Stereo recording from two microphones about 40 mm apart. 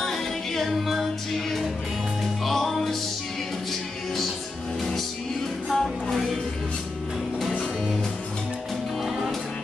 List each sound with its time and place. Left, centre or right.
0.0 s music: centre
5.7 s music: centre